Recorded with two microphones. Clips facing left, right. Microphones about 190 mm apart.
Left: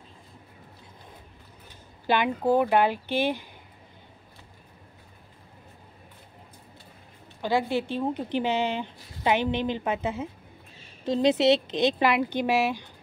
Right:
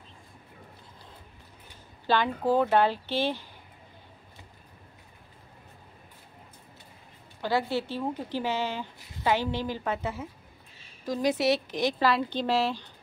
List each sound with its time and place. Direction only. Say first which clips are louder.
2.0 s a woman's voice: left 2 dB; 15° left (ahead or behind)
7.4 s a woman's voice: left 2 dB; 15° left (ahead or behind)